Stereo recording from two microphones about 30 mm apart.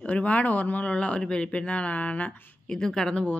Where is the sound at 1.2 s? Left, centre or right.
Left.